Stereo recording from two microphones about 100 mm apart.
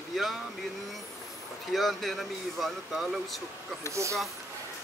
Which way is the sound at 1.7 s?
Centre (ahead or behind).